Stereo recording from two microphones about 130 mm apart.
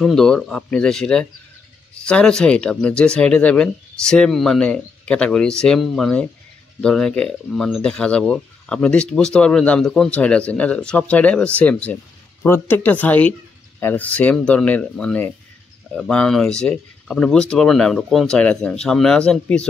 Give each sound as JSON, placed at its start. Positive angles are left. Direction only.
{"t": 0.0, "sound": "speech", "side_deg": 5}